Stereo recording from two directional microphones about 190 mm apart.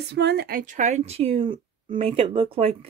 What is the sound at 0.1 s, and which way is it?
A woman's voice, 60° right (ahead or behind).